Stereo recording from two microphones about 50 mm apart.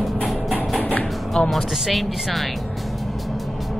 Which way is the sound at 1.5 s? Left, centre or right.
Centre.